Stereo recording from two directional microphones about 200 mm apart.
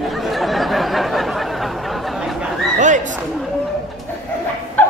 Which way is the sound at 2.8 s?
40° right (ahead or behind).